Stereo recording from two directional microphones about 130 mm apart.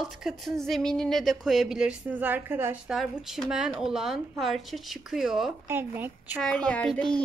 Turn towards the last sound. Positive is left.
turn(degrees=10)  # may be behind; listen again after turning